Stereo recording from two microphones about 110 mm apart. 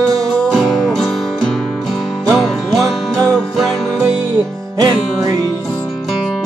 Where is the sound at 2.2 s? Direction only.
5° left (ahead or behind).